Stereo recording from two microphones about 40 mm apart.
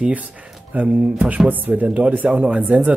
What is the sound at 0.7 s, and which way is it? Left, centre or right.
Speech, right.